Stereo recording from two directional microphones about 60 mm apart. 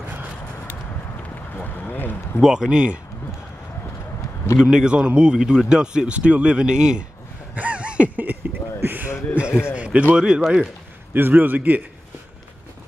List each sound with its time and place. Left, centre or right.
1.6 s speech: left
2.4 s speech: centre
4.6 s speech: centre
7.5 s a sound: right
8.4 s a sound: right
9.3 s speech: centre
11.1 s a man's voice: right